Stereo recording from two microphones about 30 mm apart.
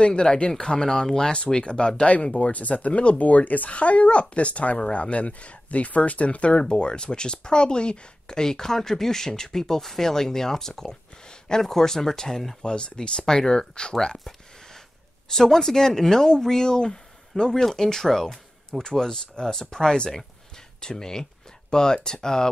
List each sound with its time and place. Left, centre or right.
0.0 s speech: left
2.0 s speech: left
3.2 s speech: left
3.7 s speech: left
6.5 s speech: left
8.3 s speech: centre
12.6 s speech: left
15.2 s speech: centre
18.0 s speech: centre
18.7 s speech: centre